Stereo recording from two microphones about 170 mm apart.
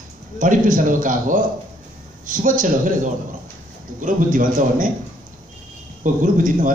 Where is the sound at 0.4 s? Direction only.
50° right (ahead or behind).